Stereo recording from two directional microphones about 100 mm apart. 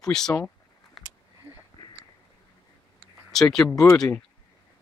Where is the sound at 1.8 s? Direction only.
40° left (ahead or behind).